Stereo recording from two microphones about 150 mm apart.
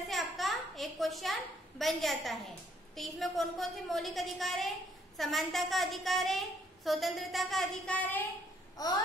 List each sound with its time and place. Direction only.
0.1 s a sound: centre (ahead or behind)
3.0 s a woman's voice: centre (ahead or behind)
8.8 s babbling: 25° left (ahead or behind)